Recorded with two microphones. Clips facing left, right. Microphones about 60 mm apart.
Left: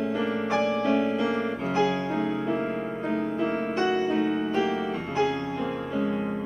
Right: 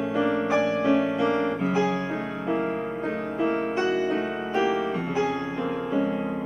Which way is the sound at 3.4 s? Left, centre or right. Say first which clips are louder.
Right 5 dB; centre.